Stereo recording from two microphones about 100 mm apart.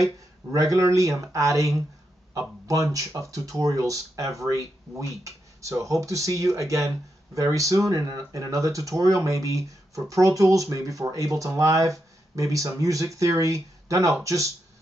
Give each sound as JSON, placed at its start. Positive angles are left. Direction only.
{"t": 0.0, "sound": "speech", "side_deg": -35}